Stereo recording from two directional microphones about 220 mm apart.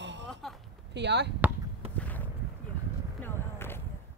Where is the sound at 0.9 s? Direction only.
50° right (ahead or behind).